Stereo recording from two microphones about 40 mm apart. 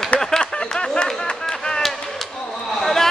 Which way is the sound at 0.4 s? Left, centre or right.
Left.